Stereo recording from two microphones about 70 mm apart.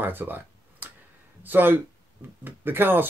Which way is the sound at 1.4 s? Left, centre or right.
Right.